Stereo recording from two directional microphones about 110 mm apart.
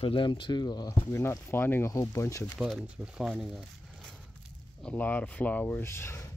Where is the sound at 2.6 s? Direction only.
5° right (ahead or behind).